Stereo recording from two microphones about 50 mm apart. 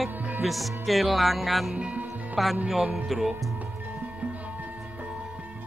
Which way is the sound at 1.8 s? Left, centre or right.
Right.